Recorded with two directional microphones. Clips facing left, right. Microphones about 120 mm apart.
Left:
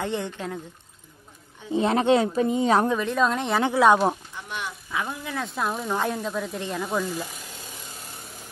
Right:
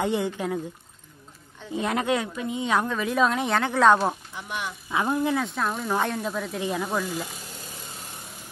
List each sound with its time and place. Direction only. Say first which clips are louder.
0.0 s speech: right 3 dB; 10° right (ahead or behind)
1.7 s speech: left 5 dB; 30° left (ahead or behind)
3.0 s speech: even; 5° right (ahead or behind)
3.5 s a woman's voice: left 1 dB; 10° left (ahead or behind)
4.9 s speech: right 7 dB; 35° right (ahead or behind)
5.3 s speech: right 2 dB; centre (ahead or behind)